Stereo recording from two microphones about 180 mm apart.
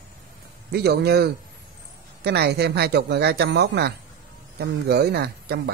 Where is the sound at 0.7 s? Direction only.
60° right (ahead or behind).